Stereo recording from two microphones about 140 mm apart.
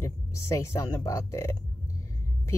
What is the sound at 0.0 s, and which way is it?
Speech, 20° left (ahead or behind).